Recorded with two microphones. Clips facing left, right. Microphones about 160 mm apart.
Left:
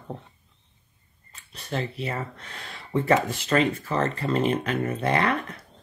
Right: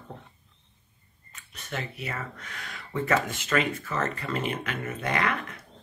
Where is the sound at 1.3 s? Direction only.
30° left (ahead or behind).